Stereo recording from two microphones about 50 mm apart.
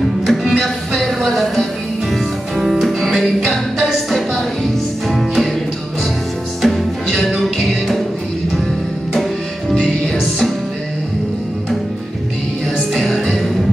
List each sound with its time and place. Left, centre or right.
0.3 s music: centre
2.6 s music: centre
6.6 s music: centre
12.9 s music: centre